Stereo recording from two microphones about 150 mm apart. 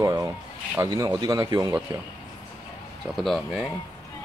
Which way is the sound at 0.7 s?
20° right (ahead or behind).